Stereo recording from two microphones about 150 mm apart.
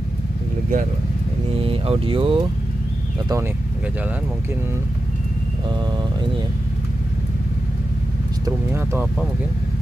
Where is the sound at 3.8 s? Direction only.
10° right (ahead or behind).